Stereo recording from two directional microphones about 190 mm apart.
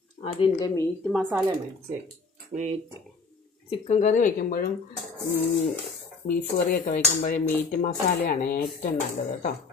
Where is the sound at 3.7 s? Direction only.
35° left (ahead or behind); by 4.7 s 50° left (ahead or behind).